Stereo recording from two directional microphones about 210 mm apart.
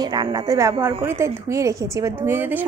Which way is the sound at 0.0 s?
20° right (ahead or behind).